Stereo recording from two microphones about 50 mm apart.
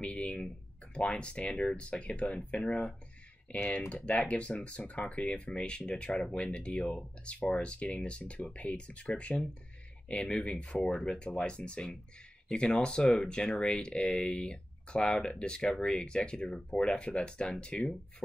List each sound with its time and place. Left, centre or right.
0.0 s speech: left